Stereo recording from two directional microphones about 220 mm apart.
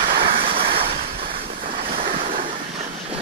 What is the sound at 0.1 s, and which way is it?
Vehicle, 40° right (ahead or behind).